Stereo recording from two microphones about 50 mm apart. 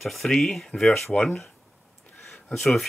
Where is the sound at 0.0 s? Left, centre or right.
Centre.